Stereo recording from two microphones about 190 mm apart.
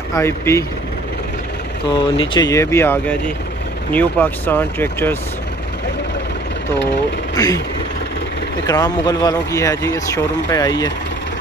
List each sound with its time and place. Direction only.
0.1 s speech: 15° left (ahead or behind)
1.9 s speech: 25° left (ahead or behind)
7.3 s speech: 20° left (ahead or behind)
8.6 s speech: 20° left (ahead or behind)